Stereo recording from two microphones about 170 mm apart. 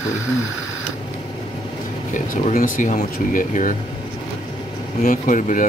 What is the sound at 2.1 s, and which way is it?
Speech, 45° left (ahead or behind).